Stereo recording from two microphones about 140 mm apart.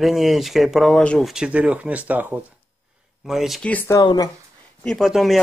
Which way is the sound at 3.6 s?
10° left (ahead or behind).